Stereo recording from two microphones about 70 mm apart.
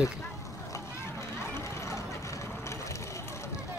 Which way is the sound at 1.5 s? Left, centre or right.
Left.